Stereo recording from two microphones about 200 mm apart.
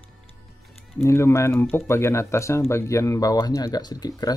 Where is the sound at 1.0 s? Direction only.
15° left (ahead or behind).